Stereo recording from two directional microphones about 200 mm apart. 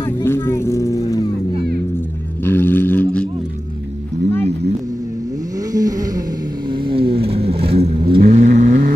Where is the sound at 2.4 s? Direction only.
10° left (ahead or behind).